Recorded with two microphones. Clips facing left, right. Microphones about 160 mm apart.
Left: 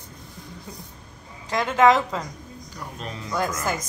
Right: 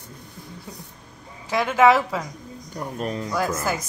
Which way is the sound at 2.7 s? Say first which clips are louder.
Right 8 dB; 45° right (ahead or behind).